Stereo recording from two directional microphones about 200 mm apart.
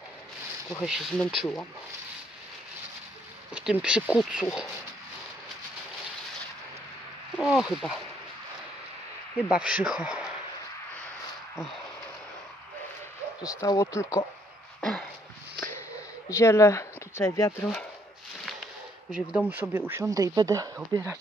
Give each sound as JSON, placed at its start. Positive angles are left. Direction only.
{"t": 0.7, "sound": "speech", "side_deg": 0}
{"t": 3.5, "sound": "speech", "side_deg": -5}
{"t": 7.3, "sound": "speech", "side_deg": 0}
{"t": 9.5, "sound": "speech", "side_deg": -5}
{"t": 13.6, "sound": "speech", "side_deg": 15}
{"t": 14.8, "sound": "a sound", "side_deg": 5}
{"t": 16.3, "sound": "speech", "side_deg": 15}
{"t": 19.0, "sound": "speech", "side_deg": -5}